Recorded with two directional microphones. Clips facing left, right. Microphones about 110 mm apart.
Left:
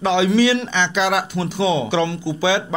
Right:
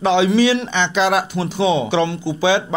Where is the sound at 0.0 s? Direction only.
25° right (ahead or behind).